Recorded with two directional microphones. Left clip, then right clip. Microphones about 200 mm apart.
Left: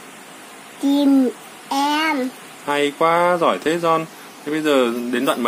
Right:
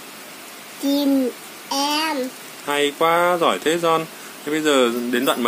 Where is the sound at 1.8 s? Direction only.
25° left (ahead or behind).